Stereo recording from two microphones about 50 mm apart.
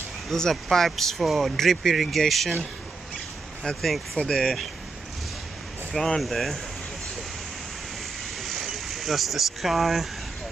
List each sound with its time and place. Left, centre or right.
0.3 s speech: centre
3.6 s speech: centre
5.9 s speech: centre
8.4 s a sound: centre